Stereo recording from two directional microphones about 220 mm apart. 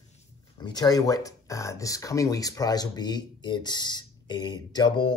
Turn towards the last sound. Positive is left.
turn(degrees=20)  # may be behind; listen again after turning